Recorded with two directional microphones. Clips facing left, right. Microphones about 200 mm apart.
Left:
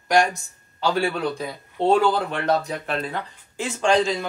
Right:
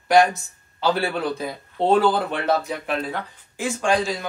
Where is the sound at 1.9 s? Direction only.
5° right (ahead or behind).